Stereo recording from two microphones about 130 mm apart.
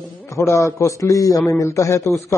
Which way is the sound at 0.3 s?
20° left (ahead or behind).